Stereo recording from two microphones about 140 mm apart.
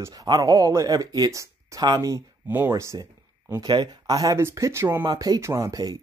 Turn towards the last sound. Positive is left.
turn(degrees=-25)  # may be behind; listen again after turning